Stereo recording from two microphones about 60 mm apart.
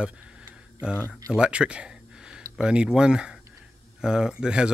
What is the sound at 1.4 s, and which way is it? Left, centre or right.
Speech, centre.